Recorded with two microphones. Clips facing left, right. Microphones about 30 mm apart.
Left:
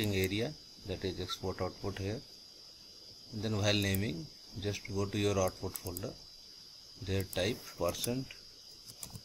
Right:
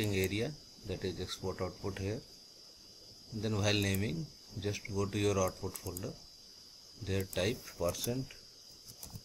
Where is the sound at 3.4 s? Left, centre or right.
Centre.